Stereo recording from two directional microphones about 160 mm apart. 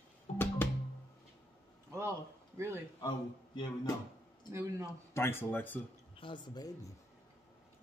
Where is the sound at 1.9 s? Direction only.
15° right (ahead or behind).